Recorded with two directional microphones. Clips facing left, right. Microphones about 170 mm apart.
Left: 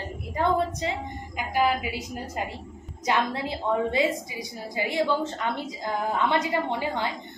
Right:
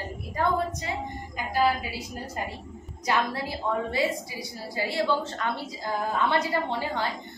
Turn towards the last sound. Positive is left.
turn(degrees=15)  # may be behind; listen again after turning